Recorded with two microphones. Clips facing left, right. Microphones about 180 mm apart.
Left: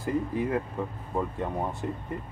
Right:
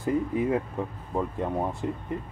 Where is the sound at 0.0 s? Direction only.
20° right (ahead or behind).